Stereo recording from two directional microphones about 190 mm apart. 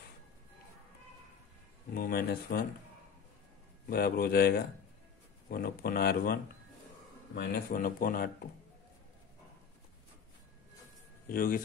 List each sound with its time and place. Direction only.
2.0 s speech: 55° left (ahead or behind)
3.9 s speech: 55° left (ahead or behind)
11.2 s speech: 50° left (ahead or behind)